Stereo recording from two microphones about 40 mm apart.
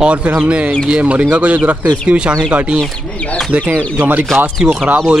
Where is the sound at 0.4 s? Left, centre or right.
Right.